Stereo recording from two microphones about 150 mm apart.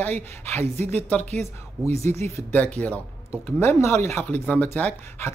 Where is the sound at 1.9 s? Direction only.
20° left (ahead or behind).